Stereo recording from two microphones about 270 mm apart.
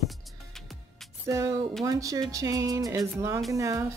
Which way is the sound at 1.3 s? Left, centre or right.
Centre.